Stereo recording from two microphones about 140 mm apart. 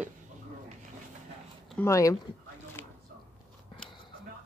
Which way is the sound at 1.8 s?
20° left (ahead or behind).